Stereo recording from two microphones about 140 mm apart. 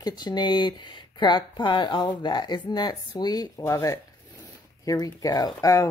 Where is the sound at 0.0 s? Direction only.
30° left (ahead or behind).